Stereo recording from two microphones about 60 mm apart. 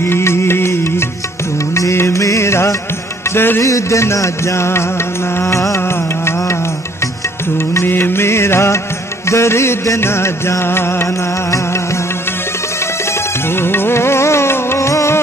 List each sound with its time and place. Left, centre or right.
0.0 s music: left
3.3 s music: left
3.6 s music: left
5.8 s music: left
13.5 s music: left